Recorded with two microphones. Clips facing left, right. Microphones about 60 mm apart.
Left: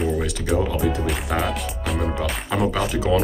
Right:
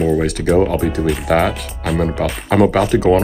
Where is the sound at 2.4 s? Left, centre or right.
Right.